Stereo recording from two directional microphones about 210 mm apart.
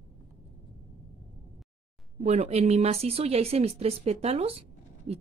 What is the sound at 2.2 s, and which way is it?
A woman's voice, 30° right (ahead or behind).